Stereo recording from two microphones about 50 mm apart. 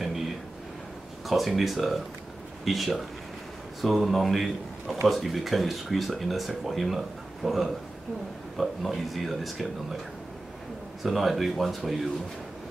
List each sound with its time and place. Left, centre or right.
1.2 s speech: centre
11.0 s speech: centre